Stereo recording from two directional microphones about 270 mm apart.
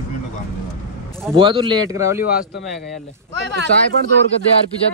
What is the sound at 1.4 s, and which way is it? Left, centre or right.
Speech, centre.